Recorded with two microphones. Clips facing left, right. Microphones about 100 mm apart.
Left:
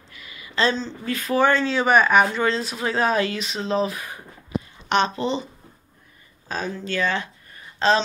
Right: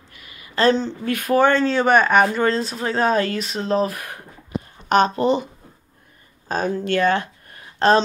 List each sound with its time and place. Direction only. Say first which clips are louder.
0.2 s speech: right 4 dB; 50° right (ahead or behind)
1.4 s speech: right 2 dB; 40° right (ahead or behind); by 4.2 s 60° right (ahead or behind)
4.8 s speech: right 5 dB; 40° right (ahead or behind)
6.5 s speech: right 6 dB; 45° right (ahead or behind)